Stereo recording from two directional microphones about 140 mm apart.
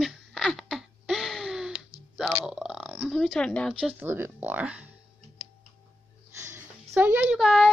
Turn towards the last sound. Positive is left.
turn(degrees=0)  # may be behind; listen again after turning